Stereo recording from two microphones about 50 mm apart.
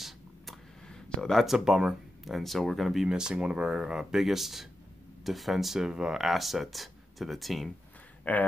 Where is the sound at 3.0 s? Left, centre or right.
Centre.